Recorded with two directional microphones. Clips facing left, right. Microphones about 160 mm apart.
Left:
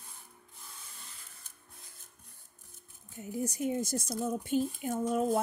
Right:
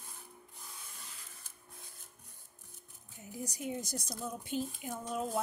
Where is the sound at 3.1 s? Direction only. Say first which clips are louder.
Left 8 dB; 50° left (ahead or behind).